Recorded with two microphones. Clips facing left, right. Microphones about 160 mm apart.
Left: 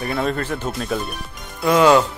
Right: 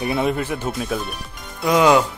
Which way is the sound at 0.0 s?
15° right (ahead or behind).